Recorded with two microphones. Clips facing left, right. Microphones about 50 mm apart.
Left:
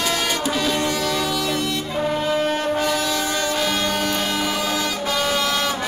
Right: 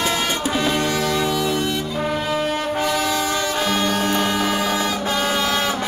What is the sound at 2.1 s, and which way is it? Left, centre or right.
Brass instrument, centre.